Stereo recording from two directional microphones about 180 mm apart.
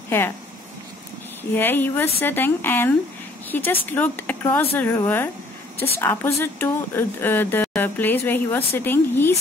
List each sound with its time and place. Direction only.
1.5 s speech: 10° left (ahead or behind)